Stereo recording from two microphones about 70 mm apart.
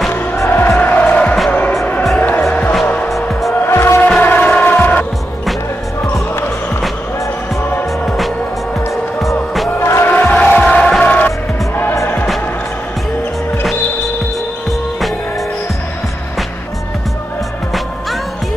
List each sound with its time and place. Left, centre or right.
0.5 s music: left
3.1 s music: centre
3.6 s music: left
4.2 s music: left
9.8 s music: left
10.0 s music: left
11.2 s music: left